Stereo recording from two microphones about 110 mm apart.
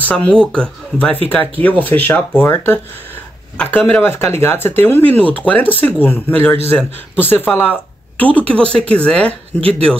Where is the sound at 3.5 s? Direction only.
10° left (ahead or behind).